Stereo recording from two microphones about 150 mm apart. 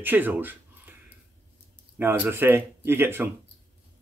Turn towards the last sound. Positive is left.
turn(degrees=-15)  # may be behind; listen again after turning